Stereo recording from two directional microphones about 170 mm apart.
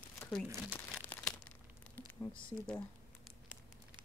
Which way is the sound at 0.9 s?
5° left (ahead or behind).